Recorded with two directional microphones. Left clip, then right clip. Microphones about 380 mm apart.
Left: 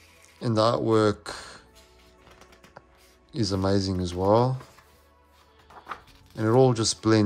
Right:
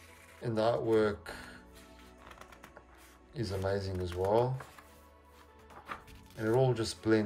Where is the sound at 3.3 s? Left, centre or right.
Centre.